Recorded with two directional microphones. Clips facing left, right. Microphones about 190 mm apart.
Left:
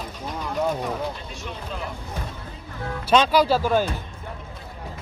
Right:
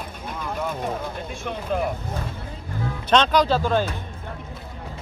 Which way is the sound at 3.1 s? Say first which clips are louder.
Left 1 dB; 5° left (ahead or behind).